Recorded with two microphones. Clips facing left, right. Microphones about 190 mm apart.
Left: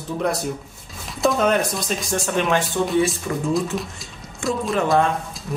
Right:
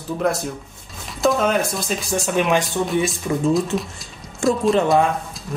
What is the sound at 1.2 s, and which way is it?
Speech, centre (ahead or behind).